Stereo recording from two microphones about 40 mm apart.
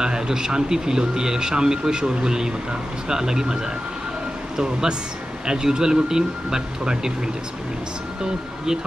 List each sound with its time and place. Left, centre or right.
0.0 s speech: centre
4.6 s speech: centre